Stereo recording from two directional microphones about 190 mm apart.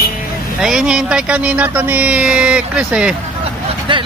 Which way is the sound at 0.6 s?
5° right (ahead or behind).